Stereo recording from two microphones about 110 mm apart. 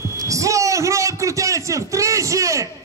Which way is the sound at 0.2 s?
30° right (ahead or behind).